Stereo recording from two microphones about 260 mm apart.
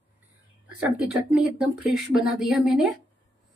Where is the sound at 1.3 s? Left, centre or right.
Centre.